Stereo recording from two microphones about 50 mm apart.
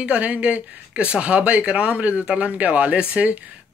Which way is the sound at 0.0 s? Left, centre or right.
Right.